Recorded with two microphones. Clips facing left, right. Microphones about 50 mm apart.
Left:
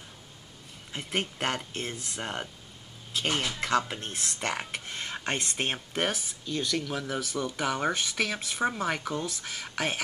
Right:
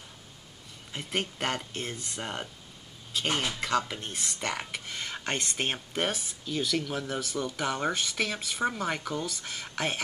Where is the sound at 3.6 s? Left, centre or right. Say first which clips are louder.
Left 1 dB; centre.